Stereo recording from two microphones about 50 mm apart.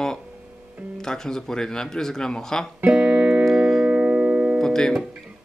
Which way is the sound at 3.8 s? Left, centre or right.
Right.